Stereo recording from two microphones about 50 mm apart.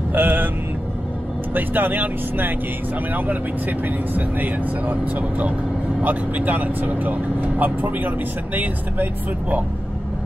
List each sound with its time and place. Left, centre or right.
0.1 s speech: right
1.5 s speech: right
3.8 s speech: right
6.0 s speech: right